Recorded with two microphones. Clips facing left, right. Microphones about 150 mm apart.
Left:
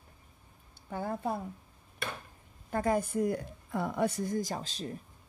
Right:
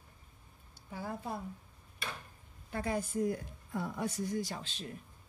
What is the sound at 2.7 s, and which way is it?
A woman's voice, 45° left (ahead or behind).